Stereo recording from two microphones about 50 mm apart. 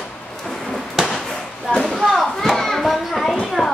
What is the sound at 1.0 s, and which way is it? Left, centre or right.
Basketball bounce, centre.